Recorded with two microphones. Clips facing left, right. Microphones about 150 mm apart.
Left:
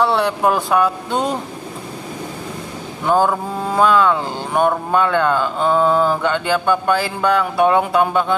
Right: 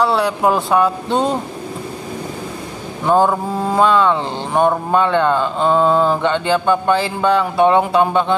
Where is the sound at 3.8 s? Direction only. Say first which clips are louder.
Even; 5° left (ahead or behind).